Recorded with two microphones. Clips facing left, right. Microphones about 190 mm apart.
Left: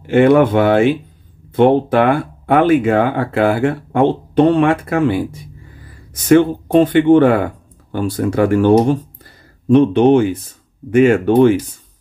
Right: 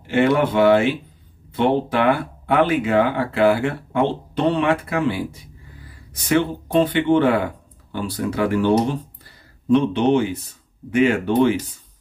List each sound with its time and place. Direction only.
0.0 s speech: 50° left (ahead or behind)
6.2 s speech: 50° left (ahead or behind)